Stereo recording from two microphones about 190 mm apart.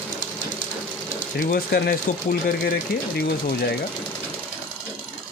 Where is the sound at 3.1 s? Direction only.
50° left (ahead or behind).